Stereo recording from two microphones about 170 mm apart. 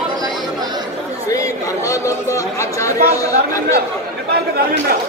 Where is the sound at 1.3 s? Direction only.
20° left (ahead or behind).